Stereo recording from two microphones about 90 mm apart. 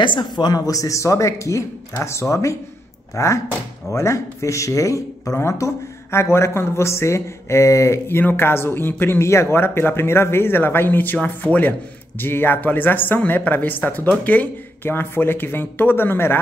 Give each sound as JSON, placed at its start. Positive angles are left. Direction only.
{"t": 0.0, "sound": "a man's voice", "side_deg": 60}
{"t": 0.7, "sound": "speech", "side_deg": 40}